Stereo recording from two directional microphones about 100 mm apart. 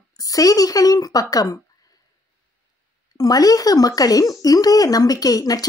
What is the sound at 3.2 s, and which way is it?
Speech, 40° left (ahead or behind).